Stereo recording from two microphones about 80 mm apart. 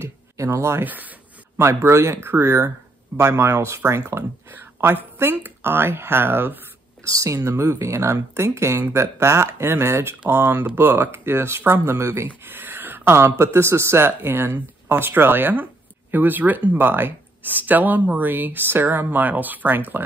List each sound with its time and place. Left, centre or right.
0.0 s speech: right
0.8 s speech: right
1.6 s speech: right
7.1 s speech: right
12.4 s speech: right